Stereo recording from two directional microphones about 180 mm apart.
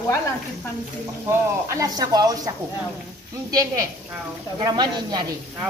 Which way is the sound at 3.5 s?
20° right (ahead or behind).